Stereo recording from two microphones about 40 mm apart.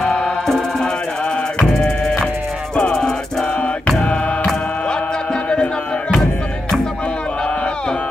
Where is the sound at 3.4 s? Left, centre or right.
Left.